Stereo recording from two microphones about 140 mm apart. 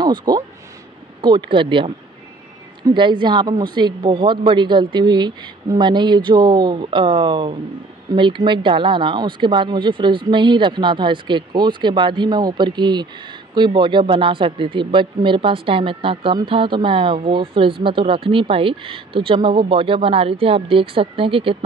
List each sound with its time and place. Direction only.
0.0 s speech: 30° right (ahead or behind)
2.9 s speech: 35° right (ahead or behind)